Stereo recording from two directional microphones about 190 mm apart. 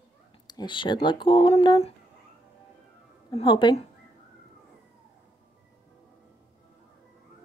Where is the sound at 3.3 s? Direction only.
25° left (ahead or behind).